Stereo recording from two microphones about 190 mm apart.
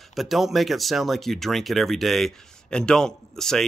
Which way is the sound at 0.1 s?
Centre (ahead or behind).